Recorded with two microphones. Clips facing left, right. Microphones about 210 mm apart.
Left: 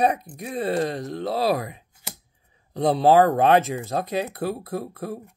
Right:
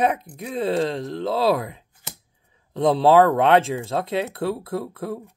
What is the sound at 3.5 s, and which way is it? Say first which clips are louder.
Speech: right 1 dB; 25° right (ahead or behind).